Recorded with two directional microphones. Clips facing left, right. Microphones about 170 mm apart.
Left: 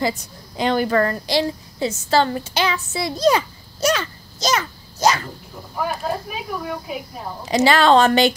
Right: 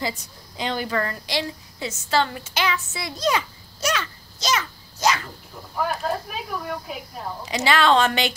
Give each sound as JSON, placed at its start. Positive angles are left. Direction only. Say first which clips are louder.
{"t": 0.6, "sound": "a woman's voice", "louder": "left 7 dB", "side_deg": 50}
{"t": 5.8, "sound": "speech", "louder": "left 1 dB", "side_deg": 5}
{"t": 7.4, "sound": "a woman's voice", "louder": "left 5 dB", "side_deg": 40}